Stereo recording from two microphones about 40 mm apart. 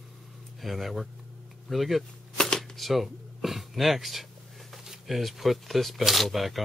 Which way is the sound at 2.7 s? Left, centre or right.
Centre.